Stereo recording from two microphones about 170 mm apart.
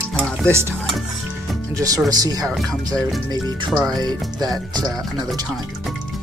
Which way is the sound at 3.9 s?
25° right (ahead or behind).